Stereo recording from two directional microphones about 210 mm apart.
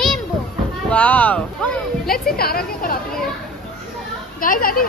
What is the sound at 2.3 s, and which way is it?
Speech, 45° left (ahead or behind).